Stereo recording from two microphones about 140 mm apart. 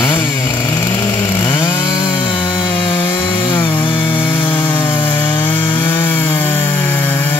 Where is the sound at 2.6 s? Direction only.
40° left (ahead or behind).